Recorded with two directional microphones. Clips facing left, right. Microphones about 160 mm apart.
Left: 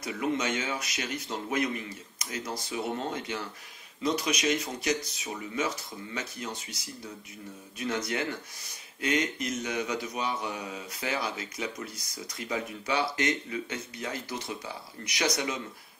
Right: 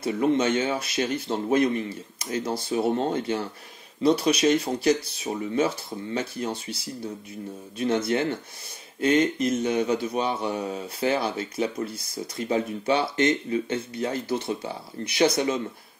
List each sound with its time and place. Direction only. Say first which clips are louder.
0.0 s speech: right 8 dB; 30° right (ahead or behind)